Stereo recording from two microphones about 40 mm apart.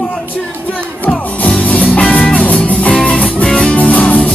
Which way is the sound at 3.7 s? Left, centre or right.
Left.